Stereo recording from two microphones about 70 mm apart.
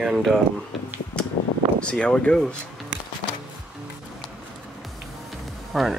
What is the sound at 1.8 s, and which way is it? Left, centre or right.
Speech, centre.